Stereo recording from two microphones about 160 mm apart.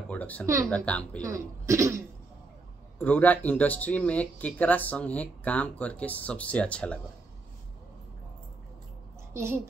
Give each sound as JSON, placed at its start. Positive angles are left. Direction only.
{"t": 0.1, "sound": "speech", "side_deg": 10}
{"t": 1.2, "sound": "speech", "side_deg": -20}
{"t": 3.0, "sound": "speech", "side_deg": 10}